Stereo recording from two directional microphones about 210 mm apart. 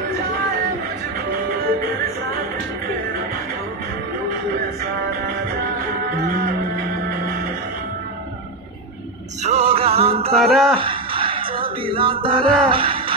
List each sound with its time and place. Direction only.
9.4 s music: 30° right (ahead or behind)
10.3 s speech: centre (ahead or behind)
10.8 s music: 25° right (ahead or behind)